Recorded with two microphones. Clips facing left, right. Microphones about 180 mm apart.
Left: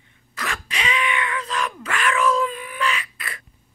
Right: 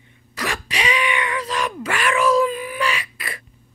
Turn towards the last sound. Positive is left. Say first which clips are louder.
# right 2 dB
turn(degrees=-10)  # may be behind; listen again after turning